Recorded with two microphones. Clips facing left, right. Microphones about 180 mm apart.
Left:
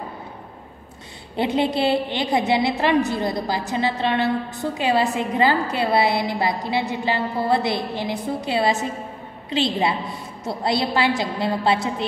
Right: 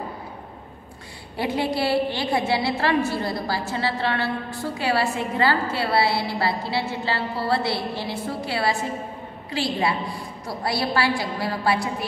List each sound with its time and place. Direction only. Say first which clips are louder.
1.3 s a woman's voice: left 4 dB; 20° left (ahead or behind)